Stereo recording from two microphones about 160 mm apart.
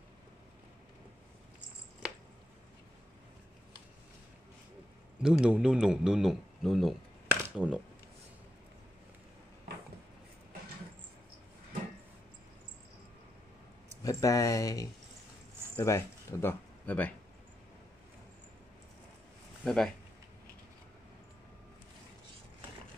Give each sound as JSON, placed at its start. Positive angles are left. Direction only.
{"t": 5.2, "sound": "speech", "side_deg": -5}
{"t": 7.2, "sound": "a sound", "side_deg": -10}
{"t": 14.0, "sound": "speech", "side_deg": 20}
{"t": 19.6, "sound": "speech", "side_deg": 5}